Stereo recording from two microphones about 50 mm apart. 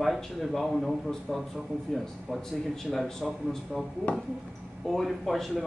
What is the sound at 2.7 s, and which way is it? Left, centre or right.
Speech, centre.